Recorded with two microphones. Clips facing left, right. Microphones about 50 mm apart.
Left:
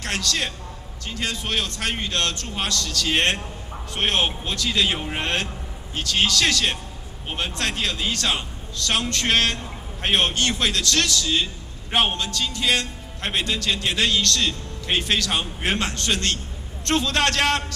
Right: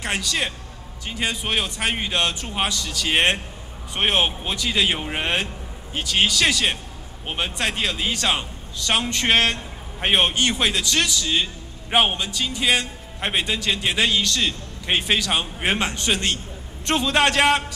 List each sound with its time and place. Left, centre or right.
0.0 s a man's voice: centre